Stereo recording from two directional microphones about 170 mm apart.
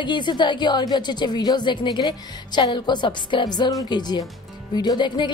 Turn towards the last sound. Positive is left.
turn(degrees=25)  # may be behind; listen again after turning